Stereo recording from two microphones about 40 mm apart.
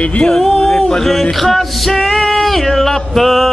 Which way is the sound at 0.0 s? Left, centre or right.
Left.